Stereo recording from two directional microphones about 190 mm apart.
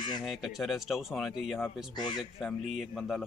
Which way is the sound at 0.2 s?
Centre (ahead or behind).